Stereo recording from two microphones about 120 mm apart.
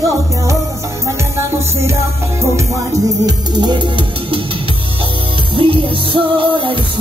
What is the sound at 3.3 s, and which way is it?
Music, 35° right (ahead or behind).